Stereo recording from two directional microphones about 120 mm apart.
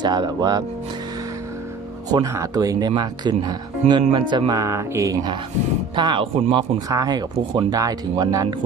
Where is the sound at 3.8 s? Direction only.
70° right (ahead or behind).